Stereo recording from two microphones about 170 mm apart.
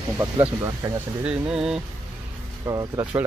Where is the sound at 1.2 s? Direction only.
5° right (ahead or behind).